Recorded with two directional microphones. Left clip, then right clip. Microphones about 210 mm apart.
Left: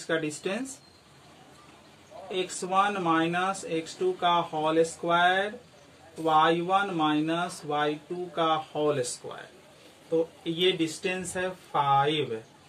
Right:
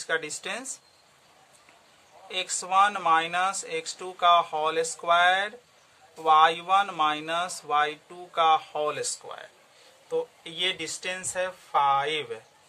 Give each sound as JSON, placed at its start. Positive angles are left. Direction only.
{"t": 0.1, "sound": "speech", "side_deg": -40}
{"t": 2.2, "sound": "speech", "side_deg": -40}
{"t": 10.4, "sound": "speech", "side_deg": -35}